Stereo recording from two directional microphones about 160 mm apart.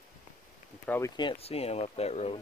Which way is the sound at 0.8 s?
10° left (ahead or behind).